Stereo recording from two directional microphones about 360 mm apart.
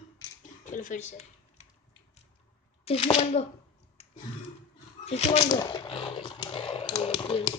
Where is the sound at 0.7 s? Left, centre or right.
Left.